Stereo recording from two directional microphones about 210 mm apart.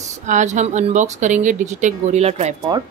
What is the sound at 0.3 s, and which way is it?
Speech, 35° right (ahead or behind).